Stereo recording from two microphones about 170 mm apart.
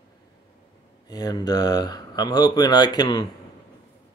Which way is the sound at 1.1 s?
20° left (ahead or behind).